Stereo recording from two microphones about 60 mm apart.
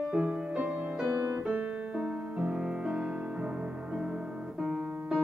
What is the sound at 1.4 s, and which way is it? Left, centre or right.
Music, centre.